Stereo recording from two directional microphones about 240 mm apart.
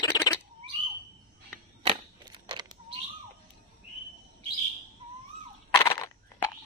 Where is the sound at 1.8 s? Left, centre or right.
Right.